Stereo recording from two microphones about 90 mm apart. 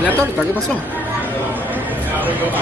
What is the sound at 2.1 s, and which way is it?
Speech, 20° right (ahead or behind).